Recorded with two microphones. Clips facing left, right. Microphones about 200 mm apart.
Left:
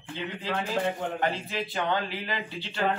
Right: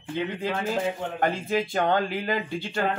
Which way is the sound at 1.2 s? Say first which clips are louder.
Right 5 dB; 45° right (ahead or behind).